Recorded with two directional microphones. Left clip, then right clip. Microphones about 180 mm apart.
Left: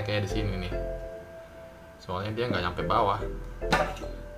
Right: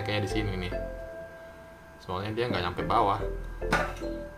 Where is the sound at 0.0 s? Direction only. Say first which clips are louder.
Even; 20° right (ahead or behind).